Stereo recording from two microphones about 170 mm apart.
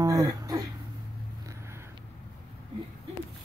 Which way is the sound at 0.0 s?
20° right (ahead or behind).